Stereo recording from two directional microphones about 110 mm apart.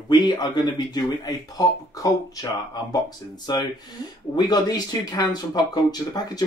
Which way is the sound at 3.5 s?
40° left (ahead or behind).